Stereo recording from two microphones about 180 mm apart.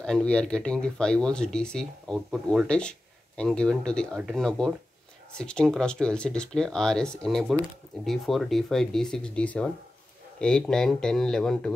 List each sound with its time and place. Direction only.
0.0 s speech: 5° left (ahead or behind)